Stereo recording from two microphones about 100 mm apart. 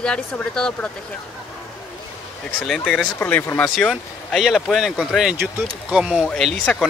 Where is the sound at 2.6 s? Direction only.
5° left (ahead or behind).